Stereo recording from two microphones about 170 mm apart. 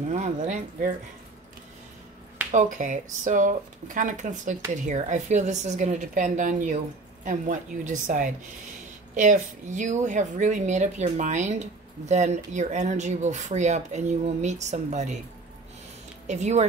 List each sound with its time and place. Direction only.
0.1 s speech: 45° right (ahead or behind)
2.5 s speech: 45° right (ahead or behind)
16.3 s speech: 40° right (ahead or behind)